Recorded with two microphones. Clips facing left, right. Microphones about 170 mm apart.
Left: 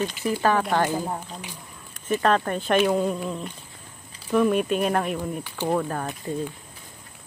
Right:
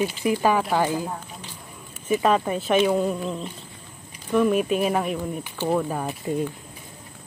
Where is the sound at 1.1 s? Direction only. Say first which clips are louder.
Left 2 dB; 10° left (ahead or behind).